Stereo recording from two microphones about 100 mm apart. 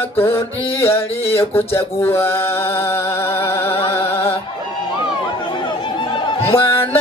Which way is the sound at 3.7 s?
75° left (ahead or behind).